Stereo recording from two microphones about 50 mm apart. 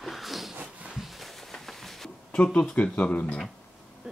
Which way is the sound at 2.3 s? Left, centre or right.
Left.